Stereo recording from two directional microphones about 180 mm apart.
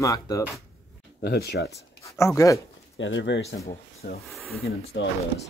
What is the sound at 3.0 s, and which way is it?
Speech, 90° left.